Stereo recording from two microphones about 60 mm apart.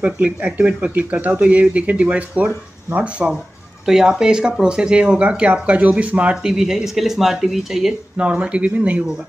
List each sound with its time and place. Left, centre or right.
0.0 s speech: right
3.8 s speech: centre
6.3 s speech: centre
8.2 s speech: centre